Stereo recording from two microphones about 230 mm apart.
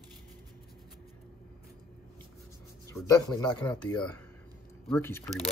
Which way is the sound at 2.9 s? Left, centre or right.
Centre.